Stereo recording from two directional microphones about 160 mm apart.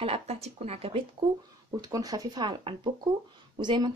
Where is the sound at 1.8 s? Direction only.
25° right (ahead or behind).